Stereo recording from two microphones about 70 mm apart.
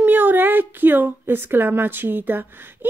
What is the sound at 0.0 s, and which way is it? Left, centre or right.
Speech, right.